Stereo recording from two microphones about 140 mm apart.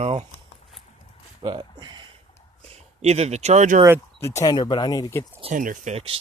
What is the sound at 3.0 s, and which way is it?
Speech, 50° right (ahead or behind).